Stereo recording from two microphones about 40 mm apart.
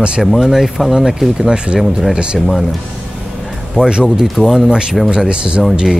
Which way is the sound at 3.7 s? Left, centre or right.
Right.